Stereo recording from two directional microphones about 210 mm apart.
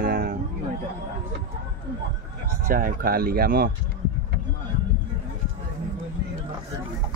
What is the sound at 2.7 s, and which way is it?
Speech, 40° right (ahead or behind).